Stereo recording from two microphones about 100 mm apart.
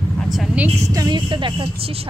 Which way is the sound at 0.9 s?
40° right (ahead or behind).